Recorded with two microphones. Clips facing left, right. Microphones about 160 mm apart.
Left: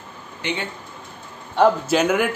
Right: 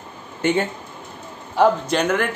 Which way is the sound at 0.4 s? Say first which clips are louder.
Right 8 dB; 45° right (ahead or behind).